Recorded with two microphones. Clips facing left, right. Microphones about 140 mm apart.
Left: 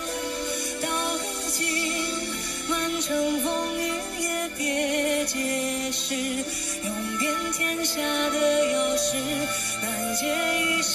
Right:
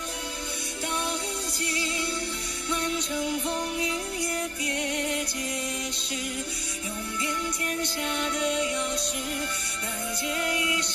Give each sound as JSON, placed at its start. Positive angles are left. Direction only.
{"t": 2.7, "sound": "music", "side_deg": 60}
{"t": 4.6, "sound": "music", "side_deg": 55}
{"t": 8.0, "sound": "music", "side_deg": 55}